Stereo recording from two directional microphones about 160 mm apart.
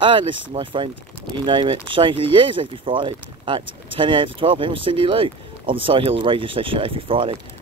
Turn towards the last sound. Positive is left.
turn(degrees=-35)  # may be behind; listen again after turning